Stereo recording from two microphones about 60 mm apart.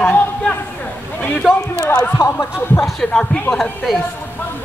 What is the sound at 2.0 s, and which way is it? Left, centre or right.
Speech, left.